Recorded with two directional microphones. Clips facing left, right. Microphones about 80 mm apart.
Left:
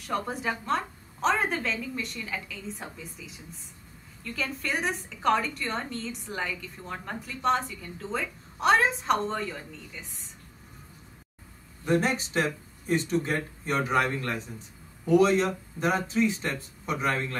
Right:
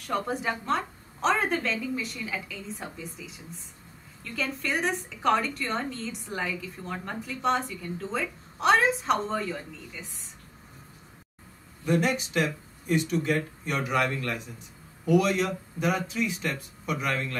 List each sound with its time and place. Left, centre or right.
0.0 s a woman's voice: centre
11.8 s speech: left